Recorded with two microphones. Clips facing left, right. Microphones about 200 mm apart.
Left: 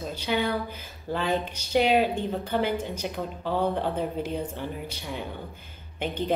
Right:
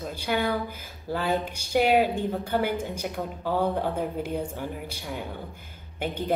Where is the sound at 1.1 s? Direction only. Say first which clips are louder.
Even; 10° right (ahead or behind).